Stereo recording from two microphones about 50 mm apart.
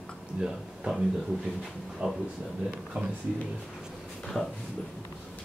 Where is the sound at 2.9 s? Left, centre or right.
Right.